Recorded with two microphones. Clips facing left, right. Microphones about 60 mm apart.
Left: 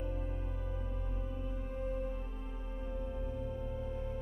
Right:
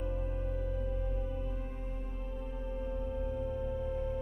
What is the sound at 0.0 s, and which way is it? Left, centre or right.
Music, centre.